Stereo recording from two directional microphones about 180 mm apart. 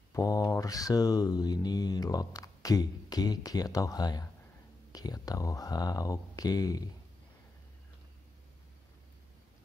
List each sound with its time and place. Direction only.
0.1 s mantra: 20° left (ahead or behind)